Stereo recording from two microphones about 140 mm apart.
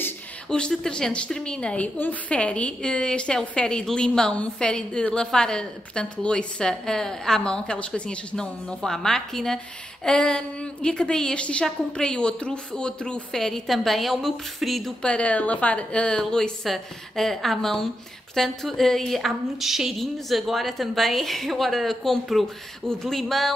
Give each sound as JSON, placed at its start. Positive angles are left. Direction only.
{"t": 0.0, "sound": "a woman's voice", "side_deg": 5}